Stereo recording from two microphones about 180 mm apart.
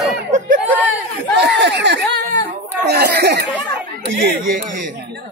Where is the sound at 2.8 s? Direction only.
65° right (ahead or behind).